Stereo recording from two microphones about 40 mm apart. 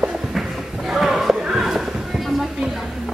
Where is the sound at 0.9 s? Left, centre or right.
Centre.